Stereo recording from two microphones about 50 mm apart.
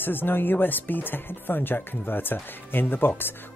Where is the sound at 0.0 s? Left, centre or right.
Left.